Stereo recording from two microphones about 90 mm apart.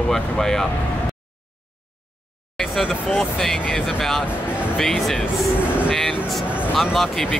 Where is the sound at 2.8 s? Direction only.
5° left (ahead or behind).